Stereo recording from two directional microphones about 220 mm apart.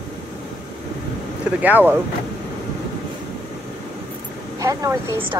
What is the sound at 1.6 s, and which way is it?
Speech, 10° right (ahead or behind).